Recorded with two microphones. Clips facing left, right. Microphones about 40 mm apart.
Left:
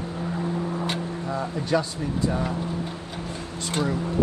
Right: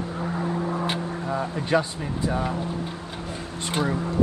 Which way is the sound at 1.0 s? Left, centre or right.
Right.